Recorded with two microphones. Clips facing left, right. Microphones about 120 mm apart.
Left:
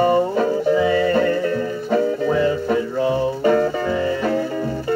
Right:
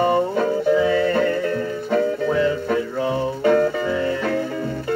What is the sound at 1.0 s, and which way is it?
Music, 25° left (ahead or behind).